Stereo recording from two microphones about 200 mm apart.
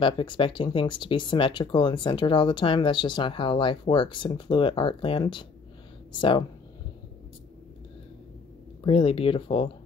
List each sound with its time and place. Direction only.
0.0 s speech: 25° left (ahead or behind)
8.8 s speech: 25° left (ahead or behind)